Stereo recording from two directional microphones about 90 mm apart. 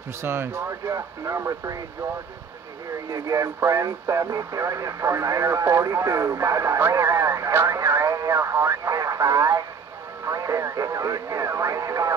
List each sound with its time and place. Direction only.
0.2 s speech: 30° right (ahead or behind)
3.1 s speech: 35° right (ahead or behind)